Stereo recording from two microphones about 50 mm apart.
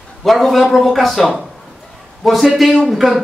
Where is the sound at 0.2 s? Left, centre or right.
Centre.